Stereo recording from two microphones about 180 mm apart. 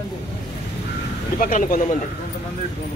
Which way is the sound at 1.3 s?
50° left (ahead or behind).